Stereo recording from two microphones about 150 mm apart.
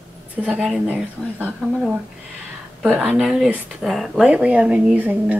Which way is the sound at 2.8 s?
5° right (ahead or behind).